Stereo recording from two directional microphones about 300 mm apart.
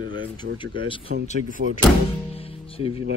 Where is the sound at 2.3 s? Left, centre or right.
Centre.